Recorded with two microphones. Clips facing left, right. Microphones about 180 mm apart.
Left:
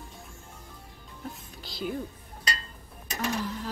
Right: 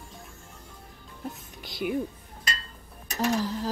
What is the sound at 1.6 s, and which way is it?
Speech, 15° right (ahead or behind).